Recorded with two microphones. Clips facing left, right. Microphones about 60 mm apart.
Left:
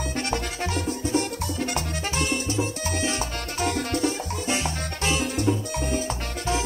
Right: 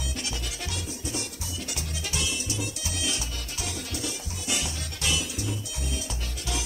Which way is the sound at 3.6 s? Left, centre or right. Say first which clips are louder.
Left 11 dB; left.